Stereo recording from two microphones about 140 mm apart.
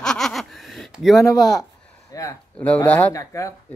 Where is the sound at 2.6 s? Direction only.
10° left (ahead or behind).